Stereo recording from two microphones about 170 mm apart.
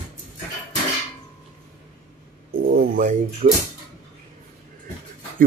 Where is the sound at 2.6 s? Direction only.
65° right (ahead or behind).